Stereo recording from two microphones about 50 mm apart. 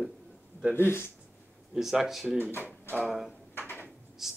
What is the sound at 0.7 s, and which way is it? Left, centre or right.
Speech, left.